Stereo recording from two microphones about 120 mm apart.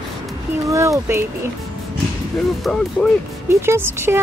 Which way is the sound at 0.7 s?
25° right (ahead or behind).